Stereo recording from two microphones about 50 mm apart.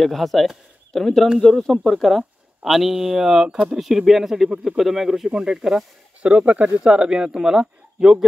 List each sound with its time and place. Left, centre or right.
0.0 s speech: centre
6.2 s speech: right
6.8 s speech: centre